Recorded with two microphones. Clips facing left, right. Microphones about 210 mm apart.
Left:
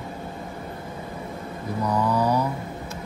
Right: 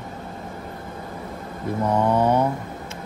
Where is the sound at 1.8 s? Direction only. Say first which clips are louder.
Right 3 dB; 25° right (ahead or behind).